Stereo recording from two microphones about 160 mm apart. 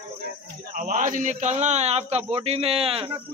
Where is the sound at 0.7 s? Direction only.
55° right (ahead or behind); by 3.2 s 35° right (ahead or behind).